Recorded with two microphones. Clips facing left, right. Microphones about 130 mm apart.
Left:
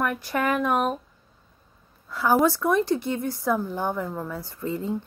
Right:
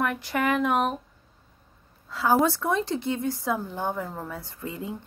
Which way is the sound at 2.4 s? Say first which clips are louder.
Left 3 dB; 25° right (ahead or behind).